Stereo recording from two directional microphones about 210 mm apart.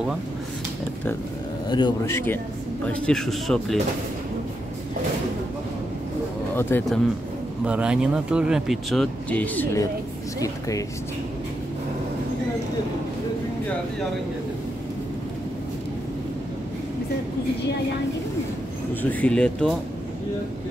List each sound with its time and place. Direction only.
1.7 s a man's voice: 20° left (ahead or behind); by 3.7 s centre (ahead or behind)
6.5 s a man's voice: 10° left (ahead or behind)
7.6 s speech: 5° right (ahead or behind)
19.0 s speech: 5° left (ahead or behind)